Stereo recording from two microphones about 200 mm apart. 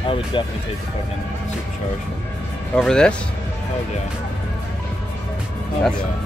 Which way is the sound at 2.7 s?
5° left (ahead or behind).